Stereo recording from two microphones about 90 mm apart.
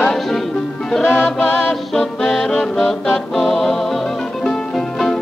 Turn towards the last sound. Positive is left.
turn(degrees=5)  # may be behind; listen again after turning